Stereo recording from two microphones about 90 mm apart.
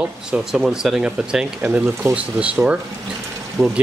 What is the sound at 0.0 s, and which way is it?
Speech, 5° right (ahead or behind).